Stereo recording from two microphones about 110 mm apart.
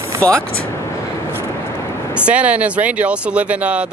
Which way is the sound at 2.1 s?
10° right (ahead or behind).